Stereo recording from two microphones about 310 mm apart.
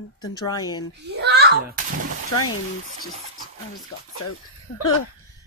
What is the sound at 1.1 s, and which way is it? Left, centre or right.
Speech, right.